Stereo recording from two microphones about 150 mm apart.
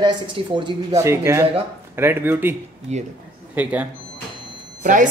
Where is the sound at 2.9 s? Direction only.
45° right (ahead or behind).